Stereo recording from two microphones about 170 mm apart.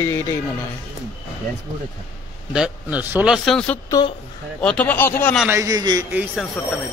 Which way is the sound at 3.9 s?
20° left (ahead or behind).